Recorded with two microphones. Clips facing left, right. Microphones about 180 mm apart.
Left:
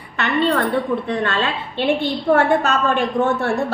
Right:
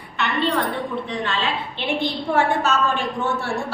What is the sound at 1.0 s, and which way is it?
A woman's voice, 60° left (ahead or behind).